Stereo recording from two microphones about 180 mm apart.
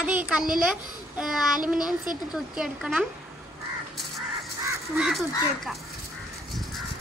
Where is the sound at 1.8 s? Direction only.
25° left (ahead or behind).